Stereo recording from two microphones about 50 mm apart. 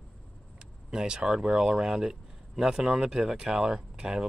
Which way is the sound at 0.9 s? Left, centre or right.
Centre.